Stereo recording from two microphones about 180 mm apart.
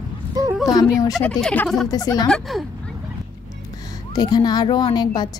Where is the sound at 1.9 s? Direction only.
20° left (ahead or behind).